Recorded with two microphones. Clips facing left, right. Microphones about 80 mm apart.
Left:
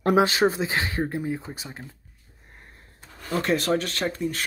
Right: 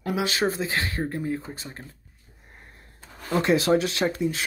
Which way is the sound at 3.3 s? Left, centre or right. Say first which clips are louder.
Right 3 dB; centre.